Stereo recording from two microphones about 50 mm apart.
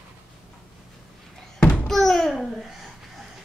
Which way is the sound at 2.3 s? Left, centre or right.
Centre.